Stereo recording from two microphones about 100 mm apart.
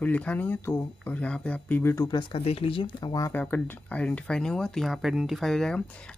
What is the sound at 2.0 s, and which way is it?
Speech, 55° left (ahead or behind).